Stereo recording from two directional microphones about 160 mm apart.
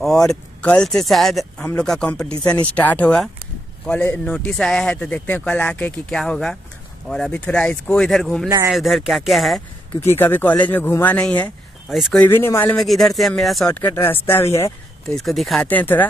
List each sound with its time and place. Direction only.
0.0 s speech: 5° left (ahead or behind)
8.5 s speech: 20° right (ahead or behind)
8.7 s speech: centre (ahead or behind)
9.9 s speech: 15° left (ahead or behind)
12.3 s speech: 15° left (ahead or behind)
12.7 s speech: centre (ahead or behind)
15.1 s speech: centre (ahead or behind)
15.6 s speech: 10° left (ahead or behind)